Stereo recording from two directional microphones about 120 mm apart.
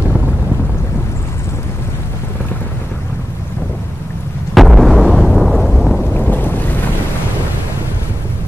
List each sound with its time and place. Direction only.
4.6 s explosion: centre (ahead or behind)
6.1 s boat: 15° left (ahead or behind)